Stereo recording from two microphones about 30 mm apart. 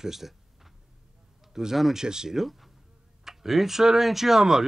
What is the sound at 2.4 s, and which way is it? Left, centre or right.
Speech, centre.